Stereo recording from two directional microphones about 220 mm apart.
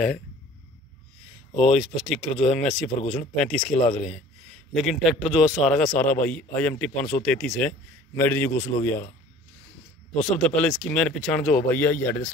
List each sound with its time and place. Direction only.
1.7 s a man's voice: centre (ahead or behind)
2.3 s speech: 30° left (ahead or behind)
2.6 s a man's voice: centre (ahead or behind)
3.0 s speech: 30° left (ahead or behind)
3.3 s a man's voice: 5° left (ahead or behind)
4.7 s a man's voice: centre (ahead or behind)
10.1 s a man's voice: centre (ahead or behind)